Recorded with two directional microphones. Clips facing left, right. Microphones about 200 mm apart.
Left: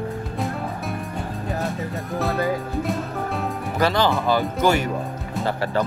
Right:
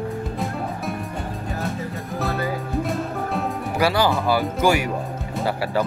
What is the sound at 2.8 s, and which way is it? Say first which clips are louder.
Music: even; 5° right (ahead or behind).